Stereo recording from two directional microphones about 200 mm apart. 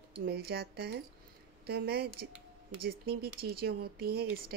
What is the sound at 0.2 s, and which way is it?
Speech, 55° right (ahead or behind).